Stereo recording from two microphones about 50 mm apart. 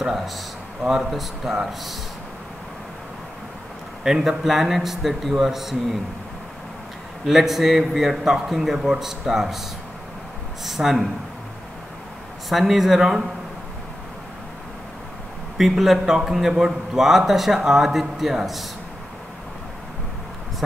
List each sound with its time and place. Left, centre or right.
1.1 s a man's voice: centre
4.0 s a man's voice: centre
7.2 s a man's voice: centre
8.7 s speech: centre
9.0 s speech: centre
10.6 s a man's voice: centre
12.4 s a man's voice: centre
15.5 s a man's voice: centre